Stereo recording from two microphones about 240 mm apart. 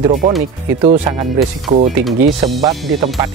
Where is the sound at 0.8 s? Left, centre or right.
Centre.